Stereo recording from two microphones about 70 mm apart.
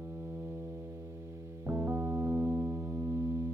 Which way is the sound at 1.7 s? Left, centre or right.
Right.